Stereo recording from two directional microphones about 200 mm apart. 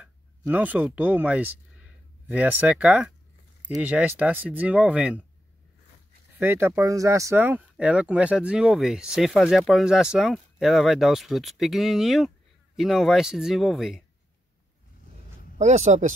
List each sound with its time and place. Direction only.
0.0 s speech: 10° right (ahead or behind)
6.4 s speech: 10° right (ahead or behind)
15.5 s speech: 35° right (ahead or behind)